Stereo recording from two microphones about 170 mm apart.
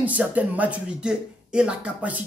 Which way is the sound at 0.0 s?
10° right (ahead or behind).